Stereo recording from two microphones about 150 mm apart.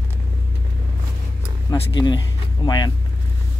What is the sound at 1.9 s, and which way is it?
Speech, 30° left (ahead or behind).